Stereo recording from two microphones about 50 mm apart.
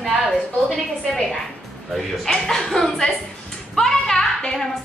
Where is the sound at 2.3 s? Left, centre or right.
Centre.